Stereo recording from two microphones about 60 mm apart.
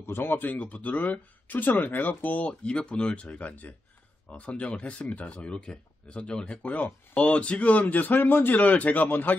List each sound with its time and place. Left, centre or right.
0.0 s speech: left